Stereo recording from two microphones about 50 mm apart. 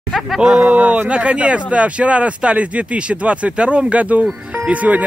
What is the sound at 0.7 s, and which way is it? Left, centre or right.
Speech, right.